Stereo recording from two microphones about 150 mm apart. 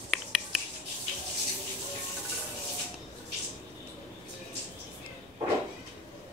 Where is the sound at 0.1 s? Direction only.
Centre (ahead or behind).